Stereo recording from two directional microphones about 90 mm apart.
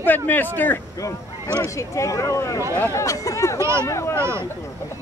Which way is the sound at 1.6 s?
35° left (ahead or behind).